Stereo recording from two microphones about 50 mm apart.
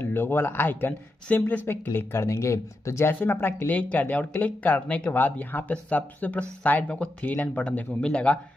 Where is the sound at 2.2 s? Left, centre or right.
Left.